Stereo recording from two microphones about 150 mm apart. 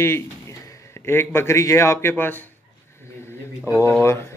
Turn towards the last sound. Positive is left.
turn(degrees=15)  # may be behind; listen again after turning